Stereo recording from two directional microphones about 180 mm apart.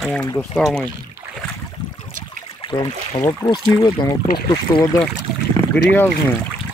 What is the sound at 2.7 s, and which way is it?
Speech, 25° left (ahead or behind).